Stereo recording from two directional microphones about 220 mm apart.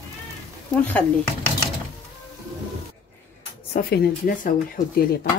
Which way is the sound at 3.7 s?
35° left (ahead or behind).